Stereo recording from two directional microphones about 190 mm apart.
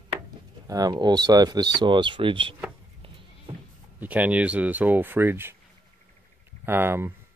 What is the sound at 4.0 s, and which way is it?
Speech, 10° right (ahead or behind).